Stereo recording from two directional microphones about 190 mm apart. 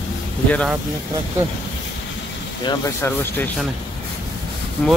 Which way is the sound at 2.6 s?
20° left (ahead or behind).